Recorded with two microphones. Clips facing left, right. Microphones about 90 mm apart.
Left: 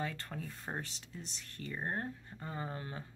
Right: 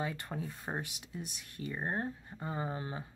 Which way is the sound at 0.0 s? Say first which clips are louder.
Right 3 dB; 15° right (ahead or behind).